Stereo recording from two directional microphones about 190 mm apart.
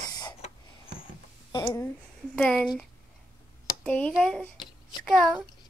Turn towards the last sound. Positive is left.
turn(degrees=0)  # may be behind; listen again after turning